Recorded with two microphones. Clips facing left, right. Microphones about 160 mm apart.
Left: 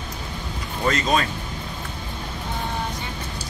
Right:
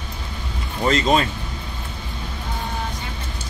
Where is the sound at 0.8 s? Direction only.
25° right (ahead or behind).